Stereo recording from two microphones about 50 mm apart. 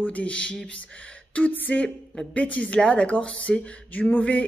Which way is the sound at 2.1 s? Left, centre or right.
Left.